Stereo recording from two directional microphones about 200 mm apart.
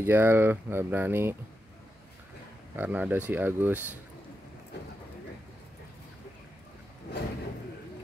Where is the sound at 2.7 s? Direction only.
10° right (ahead or behind).